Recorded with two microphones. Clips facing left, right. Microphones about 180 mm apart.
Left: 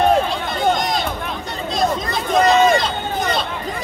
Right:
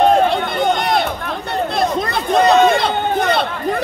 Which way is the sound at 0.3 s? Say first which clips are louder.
Right 2 dB; 60° right (ahead or behind).